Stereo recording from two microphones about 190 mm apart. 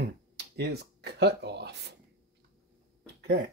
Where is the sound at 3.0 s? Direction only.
65° right (ahead or behind).